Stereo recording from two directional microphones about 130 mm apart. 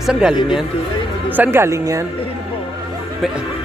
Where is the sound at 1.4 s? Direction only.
20° right (ahead or behind).